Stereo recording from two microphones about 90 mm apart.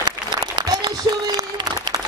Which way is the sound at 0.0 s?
50° right (ahead or behind).